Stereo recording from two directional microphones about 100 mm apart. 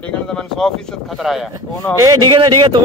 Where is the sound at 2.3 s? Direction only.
55° right (ahead or behind).